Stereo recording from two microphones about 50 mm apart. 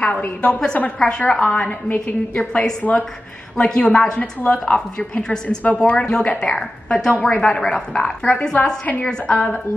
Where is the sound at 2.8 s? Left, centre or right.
Left.